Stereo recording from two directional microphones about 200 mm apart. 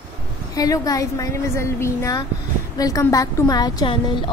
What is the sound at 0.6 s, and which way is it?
A woman's voice, 15° left (ahead or behind).